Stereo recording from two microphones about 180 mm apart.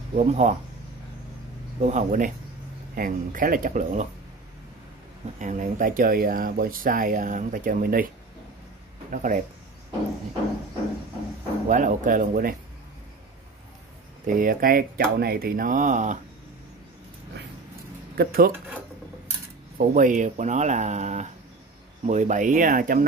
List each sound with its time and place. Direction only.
0.2 s speech: 40° right (ahead or behind)
1.8 s speech: 40° right (ahead or behind)
5.4 s speech: 45° right (ahead or behind)
9.1 s speech: 45° right (ahead or behind)
11.7 s speech: 45° right (ahead or behind)
14.2 s speech: 50° right (ahead or behind)
18.1 s speech: 55° right (ahead or behind)
19.9 s speech: 45° right (ahead or behind)